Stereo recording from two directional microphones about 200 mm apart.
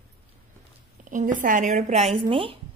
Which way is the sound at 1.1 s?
40° right (ahead or behind).